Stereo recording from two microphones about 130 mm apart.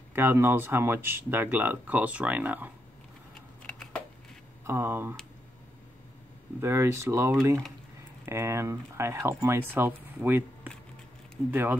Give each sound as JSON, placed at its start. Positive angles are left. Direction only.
{"t": 0.1, "sound": "speech", "side_deg": -15}
{"t": 3.6, "sound": "computer keyboard", "side_deg": 10}
{"t": 4.6, "sound": "speech", "side_deg": -20}
{"t": 6.6, "sound": "speech", "side_deg": -20}